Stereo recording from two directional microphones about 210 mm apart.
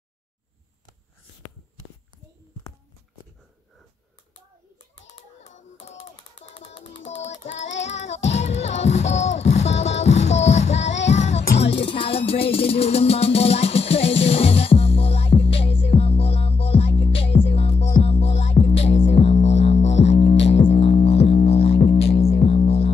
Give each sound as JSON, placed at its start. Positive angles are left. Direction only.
{"t": 5.0, "sound": "a sound", "side_deg": 35}
{"t": 6.4, "sound": "music", "side_deg": 30}
{"t": 7.8, "sound": "music", "side_deg": 35}